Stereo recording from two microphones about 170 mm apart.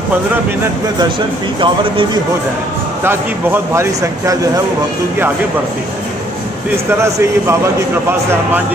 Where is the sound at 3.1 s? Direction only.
15° right (ahead or behind).